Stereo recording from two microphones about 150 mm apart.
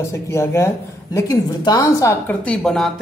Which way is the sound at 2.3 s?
5° left (ahead or behind).